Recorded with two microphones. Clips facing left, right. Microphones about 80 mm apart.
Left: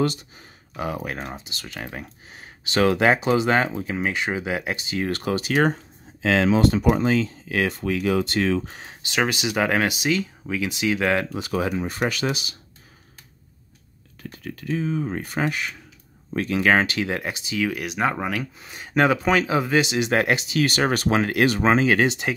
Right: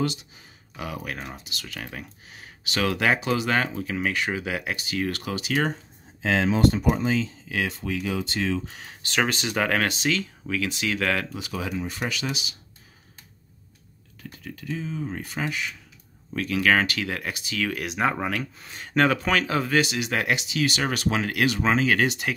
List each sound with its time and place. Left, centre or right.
0.7 s speech: left
5.1 s speech: left
6.2 s speech: left
9.0 s speech: centre
11.3 s speech: left
14.3 s speech: left
16.3 s speech: left
17.6 s speech: centre
20.0 s speech: left